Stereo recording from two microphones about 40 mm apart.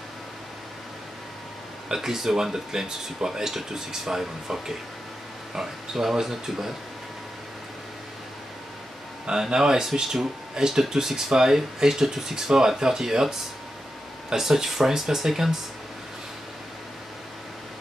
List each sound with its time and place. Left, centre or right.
1.9 s speech: centre
9.2 s speech: centre